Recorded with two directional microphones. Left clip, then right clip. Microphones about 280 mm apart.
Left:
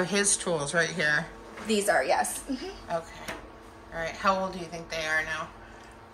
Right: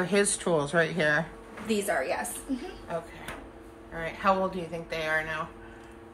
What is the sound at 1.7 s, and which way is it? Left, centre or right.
Speech, left.